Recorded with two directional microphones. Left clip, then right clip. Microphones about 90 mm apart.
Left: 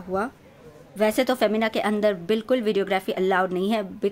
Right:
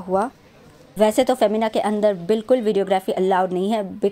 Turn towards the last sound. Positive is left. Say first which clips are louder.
# right 3 dB
turn(degrees=-30)  # may be behind; listen again after turning